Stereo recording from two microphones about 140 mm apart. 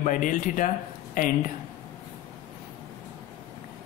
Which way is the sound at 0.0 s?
70° left (ahead or behind).